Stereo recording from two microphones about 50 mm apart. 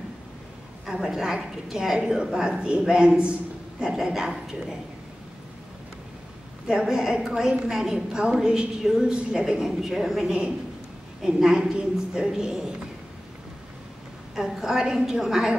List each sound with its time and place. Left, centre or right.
0.8 s a woman's voice: centre
3.9 s a woman's voice: centre
6.7 s a woman's voice: centre
14.3 s a woman's voice: centre